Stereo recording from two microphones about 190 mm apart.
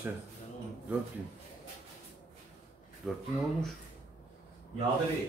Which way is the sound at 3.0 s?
Centre (ahead or behind).